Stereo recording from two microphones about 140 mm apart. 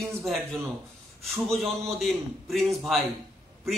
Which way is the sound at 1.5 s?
Centre (ahead or behind).